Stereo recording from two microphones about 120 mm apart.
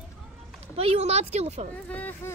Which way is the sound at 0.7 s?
55° right (ahead or behind).